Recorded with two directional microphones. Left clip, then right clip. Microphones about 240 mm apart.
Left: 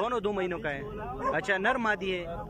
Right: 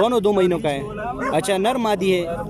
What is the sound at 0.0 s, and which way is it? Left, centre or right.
Speech, centre.